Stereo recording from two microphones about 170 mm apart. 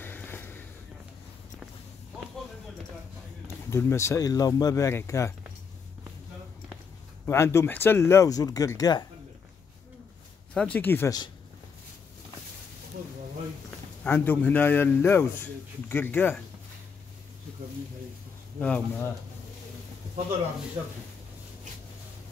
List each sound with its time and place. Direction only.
0.0 s a sound: 10° left (ahead or behind)
3.7 s speech: 15° left (ahead or behind)
7.2 s speech: 15° left (ahead or behind)
10.5 s speech: 5° left (ahead or behind)
14.0 s speech: 10° left (ahead or behind)
18.6 s speech: 5° left (ahead or behind)